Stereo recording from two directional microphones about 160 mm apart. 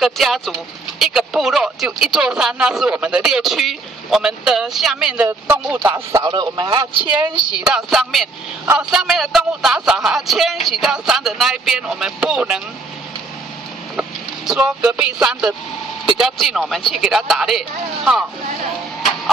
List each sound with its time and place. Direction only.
0.0 s speech: centre (ahead or behind); by 7.2 s 30° right (ahead or behind)
7.6 s speech: 5° right (ahead or behind)
13.9 s speech: 5° right (ahead or behind)